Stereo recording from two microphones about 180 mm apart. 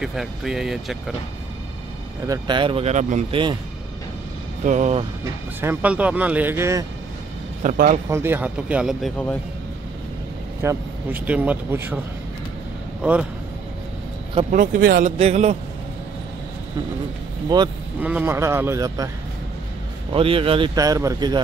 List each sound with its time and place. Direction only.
0.0 s speech: centre (ahead or behind)
2.2 s speech: 20° right (ahead or behind); by 3.3 s 40° right (ahead or behind)
4.6 s speech: 40° right (ahead or behind)
5.6 s speech: 10° right (ahead or behind)
7.6 s speech: 45° right (ahead or behind)
8.1 s speech: 15° right (ahead or behind)
10.6 s speech: 10° right (ahead or behind)
13.0 s speech: 5° right (ahead or behind)
14.5 s speech: 50° right (ahead or behind)
15.1 s speech: 35° right (ahead or behind)
17.5 s speech: 25° right (ahead or behind)
18.0 s speech: 10° right (ahead or behind)
20.1 s speech: 30° right (ahead or behind)